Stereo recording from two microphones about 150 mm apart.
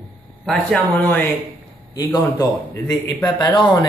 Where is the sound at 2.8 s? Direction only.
25° left (ahead or behind).